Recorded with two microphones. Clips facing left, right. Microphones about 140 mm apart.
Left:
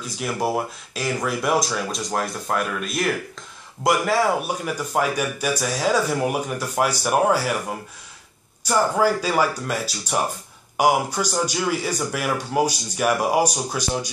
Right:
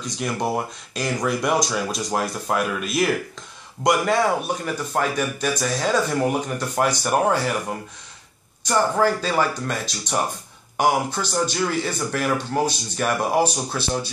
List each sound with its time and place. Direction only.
0.0 s speech: 5° left (ahead or behind)